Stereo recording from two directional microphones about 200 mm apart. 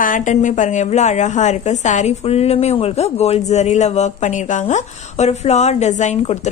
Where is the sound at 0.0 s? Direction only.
40° left (ahead or behind).